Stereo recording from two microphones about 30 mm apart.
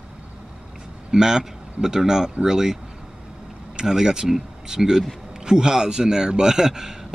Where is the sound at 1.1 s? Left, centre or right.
Centre.